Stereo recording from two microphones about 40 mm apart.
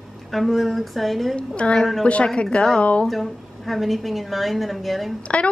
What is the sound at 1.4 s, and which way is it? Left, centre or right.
A woman's voice, left.